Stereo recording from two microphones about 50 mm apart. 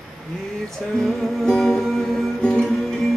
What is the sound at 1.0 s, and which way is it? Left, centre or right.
Music, centre.